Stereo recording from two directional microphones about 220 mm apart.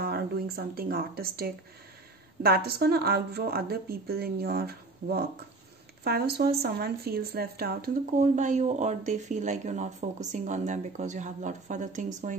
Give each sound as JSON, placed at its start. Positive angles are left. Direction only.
{"t": 0.0, "sound": "speech", "side_deg": -45}